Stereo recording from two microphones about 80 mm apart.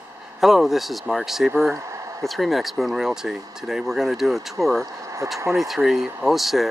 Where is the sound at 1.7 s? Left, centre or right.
Right.